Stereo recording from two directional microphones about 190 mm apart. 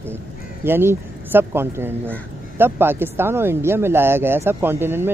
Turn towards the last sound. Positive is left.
turn(degrees=-10)  # may be behind; listen again after turning